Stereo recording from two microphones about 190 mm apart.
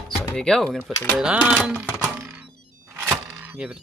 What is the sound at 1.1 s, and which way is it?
Music, 5° right (ahead or behind).